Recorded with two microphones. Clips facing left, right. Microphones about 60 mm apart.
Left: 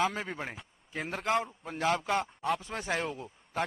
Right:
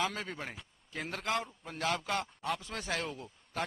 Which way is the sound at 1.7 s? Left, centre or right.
Left.